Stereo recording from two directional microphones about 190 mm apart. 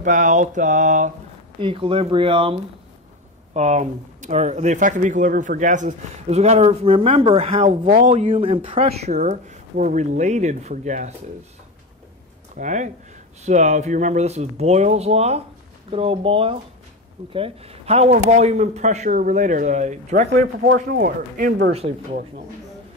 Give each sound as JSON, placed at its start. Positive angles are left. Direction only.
{"t": 0.0, "sound": "speech", "side_deg": -40}
{"t": 1.6, "sound": "speech", "side_deg": -30}
{"t": 12.5, "sound": "speech", "side_deg": -40}
{"t": 20.6, "sound": "speech", "side_deg": -60}